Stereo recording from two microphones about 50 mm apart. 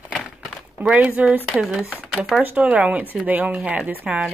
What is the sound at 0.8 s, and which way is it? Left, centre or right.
A woman's voice, right.